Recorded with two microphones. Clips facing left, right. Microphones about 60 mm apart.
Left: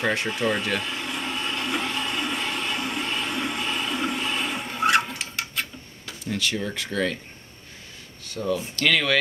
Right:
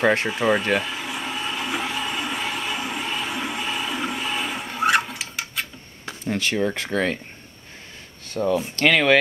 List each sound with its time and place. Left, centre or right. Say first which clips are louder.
0.3 s speech: right 4 dB; centre
0.8 s blender: right 1 dB; centre
5.1 s a sound: even; centre
6.0 s speech: right 3 dB; right
8.3 s speech: right 5 dB; right